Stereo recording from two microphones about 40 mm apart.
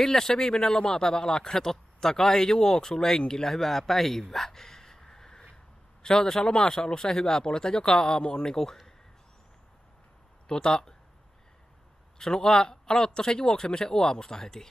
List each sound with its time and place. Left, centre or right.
0.0 s a man's voice: centre
10.5 s a man's voice: centre
12.2 s speech: centre